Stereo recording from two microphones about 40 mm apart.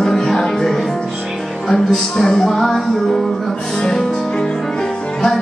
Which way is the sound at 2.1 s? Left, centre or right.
Centre.